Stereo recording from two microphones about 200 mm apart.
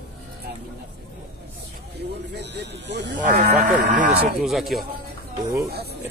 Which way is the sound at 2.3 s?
60° right (ahead or behind).